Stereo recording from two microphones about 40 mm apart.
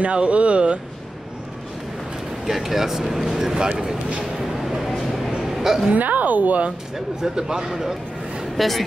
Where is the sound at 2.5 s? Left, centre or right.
Centre.